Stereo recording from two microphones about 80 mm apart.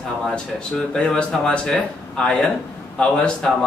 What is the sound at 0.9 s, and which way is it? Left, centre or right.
A man's voice, centre.